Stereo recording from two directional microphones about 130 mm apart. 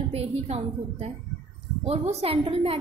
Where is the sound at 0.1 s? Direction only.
55° right (ahead or behind).